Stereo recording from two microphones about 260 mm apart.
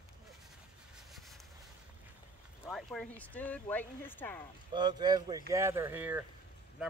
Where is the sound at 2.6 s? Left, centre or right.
Centre.